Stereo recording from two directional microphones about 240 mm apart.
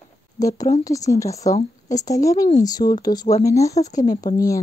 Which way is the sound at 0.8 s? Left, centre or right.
Centre.